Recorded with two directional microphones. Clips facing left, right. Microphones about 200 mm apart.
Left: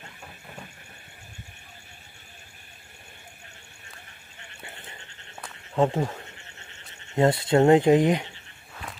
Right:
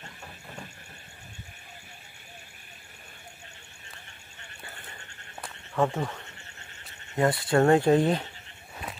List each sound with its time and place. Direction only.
5.8 s speech: 30° left (ahead or behind)